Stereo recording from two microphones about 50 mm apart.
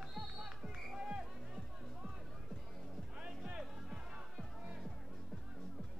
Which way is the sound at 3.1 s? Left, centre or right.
Centre.